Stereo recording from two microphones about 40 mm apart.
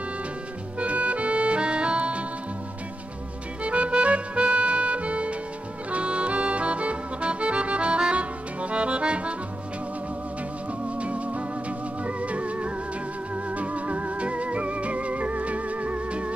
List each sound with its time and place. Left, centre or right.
0.7 s music: right
3.6 s music: right
11.0 s music: right